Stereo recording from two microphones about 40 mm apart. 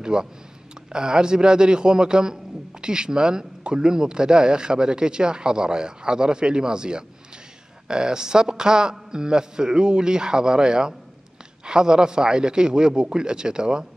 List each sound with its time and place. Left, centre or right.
0.0 s speech: centre